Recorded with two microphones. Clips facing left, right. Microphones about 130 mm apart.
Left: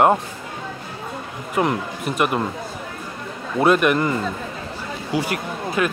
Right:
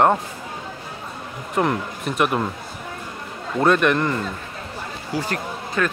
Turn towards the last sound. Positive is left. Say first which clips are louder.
# left 2 dB
turn(degrees=15)  # may be behind; listen again after turning